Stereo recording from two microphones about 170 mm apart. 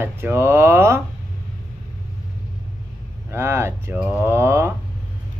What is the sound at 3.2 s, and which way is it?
Speech, 15° right (ahead or behind).